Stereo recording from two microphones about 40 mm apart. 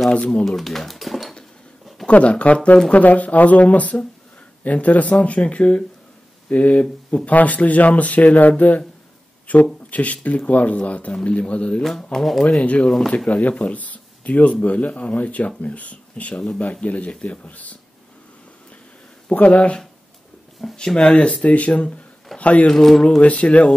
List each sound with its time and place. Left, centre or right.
0.1 s speech: left
0.5 s speech: centre
2.0 s speech: left
7.2 s speech: left
12.0 s speech: centre
12.6 s speech: left
19.3 s speech: left
20.7 s speech: centre; by 22.7 s left
22.7 s speech: centre
23.2 s speech: left